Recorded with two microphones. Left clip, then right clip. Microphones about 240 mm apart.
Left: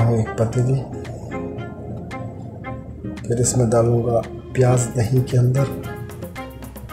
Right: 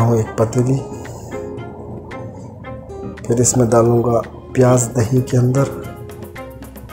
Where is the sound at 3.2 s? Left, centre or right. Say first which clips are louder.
Right 5 dB; centre.